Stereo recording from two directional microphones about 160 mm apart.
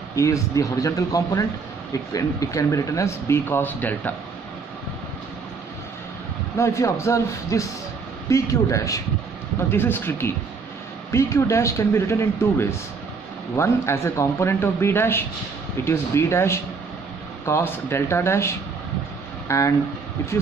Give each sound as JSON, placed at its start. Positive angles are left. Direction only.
{"t": 0.1, "sound": "speech", "side_deg": 20}
{"t": 6.5, "sound": "speech", "side_deg": 20}